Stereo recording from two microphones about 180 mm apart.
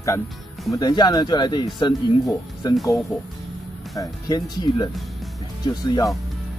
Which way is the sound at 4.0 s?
20° left (ahead or behind).